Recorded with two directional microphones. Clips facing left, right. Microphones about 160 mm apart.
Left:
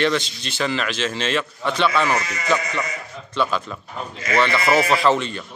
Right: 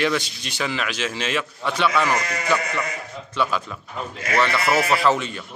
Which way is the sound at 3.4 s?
5° right (ahead or behind).